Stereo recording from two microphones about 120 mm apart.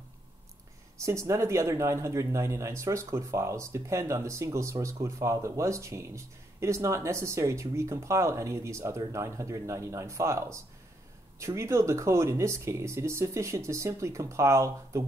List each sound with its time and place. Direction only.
0.9 s speech: 25° right (ahead or behind)